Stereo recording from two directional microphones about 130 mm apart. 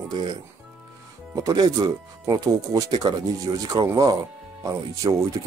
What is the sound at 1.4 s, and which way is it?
Speech, 30° right (ahead or behind).